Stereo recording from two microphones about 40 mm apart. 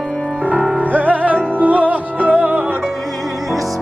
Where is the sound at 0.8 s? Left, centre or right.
Right.